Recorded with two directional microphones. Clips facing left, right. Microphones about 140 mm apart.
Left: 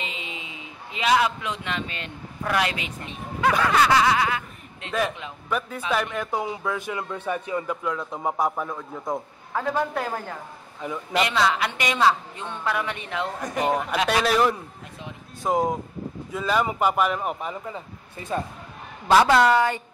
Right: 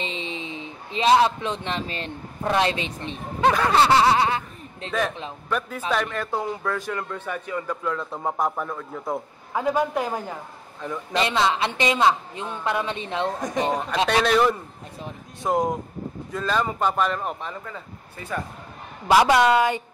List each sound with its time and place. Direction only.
0.0 s speech: 30° right (ahead or behind)
5.9 s a man's voice: 5° left (ahead or behind)
7.8 s a man's voice: 5° left (ahead or behind); by 10.4 s 15° right (ahead or behind)
10.8 s speech: 10° left (ahead or behind)
11.1 s a woman's voice: 25° right (ahead or behind)
14.0 s a man's voice: centre (ahead or behind); by 18.4 s 20° left (ahead or behind)
19.0 s a woman's voice: 15° right (ahead or behind)